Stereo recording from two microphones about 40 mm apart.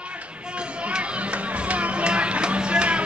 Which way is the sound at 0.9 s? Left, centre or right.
Right.